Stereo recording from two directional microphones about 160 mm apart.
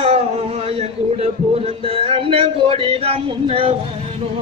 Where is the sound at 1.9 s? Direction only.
35° right (ahead or behind).